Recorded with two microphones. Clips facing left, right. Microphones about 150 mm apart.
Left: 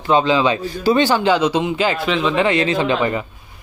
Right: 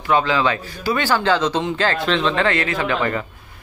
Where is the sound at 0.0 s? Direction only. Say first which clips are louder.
Left 3 dB; 20° left (ahead or behind).